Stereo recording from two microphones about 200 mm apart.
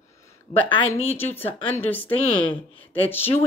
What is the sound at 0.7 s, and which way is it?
Speech, 25° left (ahead or behind).